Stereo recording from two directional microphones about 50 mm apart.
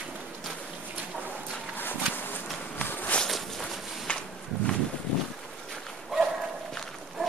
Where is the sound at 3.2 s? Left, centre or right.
Centre.